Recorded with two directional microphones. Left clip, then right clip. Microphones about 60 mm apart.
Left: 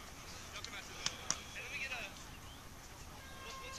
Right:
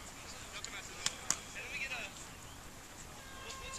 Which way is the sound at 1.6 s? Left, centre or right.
Centre.